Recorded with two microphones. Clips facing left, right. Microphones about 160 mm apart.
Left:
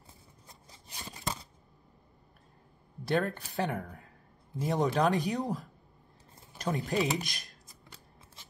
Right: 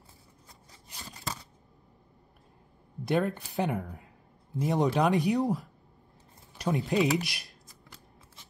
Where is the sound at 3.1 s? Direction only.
20° right (ahead or behind).